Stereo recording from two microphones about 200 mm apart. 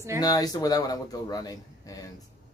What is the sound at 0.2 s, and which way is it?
Speech, 20° left (ahead or behind).